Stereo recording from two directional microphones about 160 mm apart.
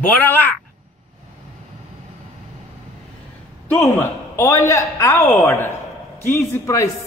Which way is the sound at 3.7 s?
10° left (ahead or behind).